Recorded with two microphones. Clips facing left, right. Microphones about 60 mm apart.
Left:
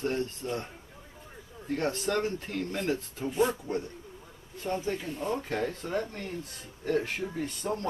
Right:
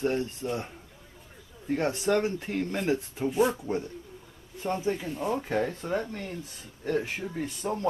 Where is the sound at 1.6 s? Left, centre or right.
Centre.